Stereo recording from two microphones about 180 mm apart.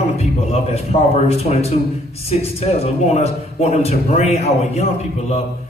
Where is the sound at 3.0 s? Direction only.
40° left (ahead or behind).